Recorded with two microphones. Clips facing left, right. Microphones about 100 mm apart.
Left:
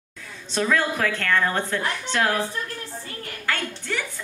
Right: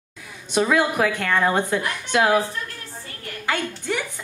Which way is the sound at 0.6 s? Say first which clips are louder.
Right 3 dB; 15° right (ahead or behind).